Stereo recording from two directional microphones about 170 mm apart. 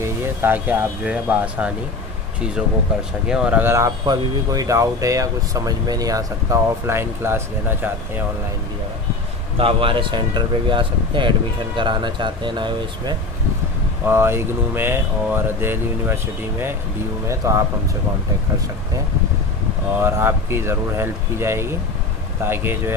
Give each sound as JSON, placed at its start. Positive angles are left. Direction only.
{"t": 0.0, "sound": "speech", "side_deg": -15}
{"t": 3.3, "sound": "speech", "side_deg": -5}
{"t": 9.6, "sound": "speech", "side_deg": -30}
{"t": 14.0, "sound": "speech", "side_deg": -15}
{"t": 20.0, "sound": "speech", "side_deg": -15}